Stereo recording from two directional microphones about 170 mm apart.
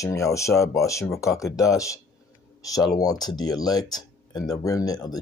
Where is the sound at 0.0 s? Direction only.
20° left (ahead or behind).